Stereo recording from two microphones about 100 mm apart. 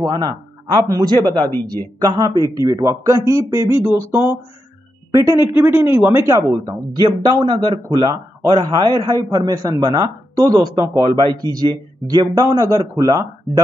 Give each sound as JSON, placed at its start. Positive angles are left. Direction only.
{"t": 0.0, "sound": "a man's voice", "side_deg": -45}
{"t": 1.4, "sound": "speech", "side_deg": 20}
{"t": 2.0, "sound": "speech", "side_deg": -40}
{"t": 6.5, "sound": "speech", "side_deg": -45}